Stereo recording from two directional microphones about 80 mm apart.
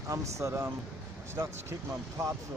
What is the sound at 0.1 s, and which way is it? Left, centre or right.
Speech, right.